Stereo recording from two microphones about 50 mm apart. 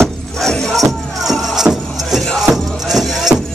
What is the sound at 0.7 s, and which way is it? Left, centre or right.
Music, centre.